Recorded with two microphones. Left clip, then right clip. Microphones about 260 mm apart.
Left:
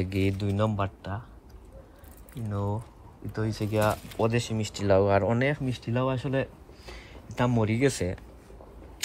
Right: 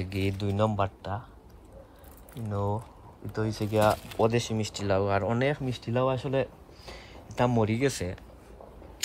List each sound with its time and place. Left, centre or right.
0.0 s speech: centre
2.5 s speech: centre